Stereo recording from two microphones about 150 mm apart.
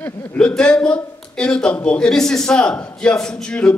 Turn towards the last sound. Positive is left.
turn(degrees=5)  # may be behind; listen again after turning